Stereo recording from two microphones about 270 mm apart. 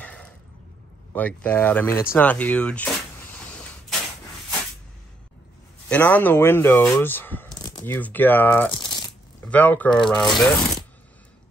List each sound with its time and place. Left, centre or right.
0.0 s throat clearing: centre
1.1 s speech: centre
5.9 s speech: centre
8.7 s tearing: centre
9.5 s speech: centre